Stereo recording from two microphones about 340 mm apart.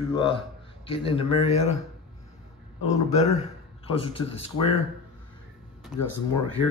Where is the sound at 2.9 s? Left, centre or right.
Centre.